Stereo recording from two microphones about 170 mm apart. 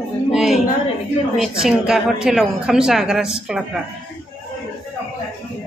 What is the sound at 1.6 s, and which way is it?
A woman's voice, 5° right (ahead or behind).